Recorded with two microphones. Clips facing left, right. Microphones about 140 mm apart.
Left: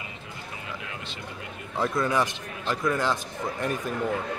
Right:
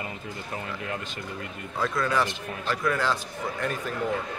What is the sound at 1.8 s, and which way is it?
A man's voice, 20° left (ahead or behind).